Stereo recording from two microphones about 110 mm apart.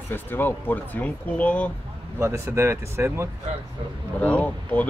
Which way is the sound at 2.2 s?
25° right (ahead or behind).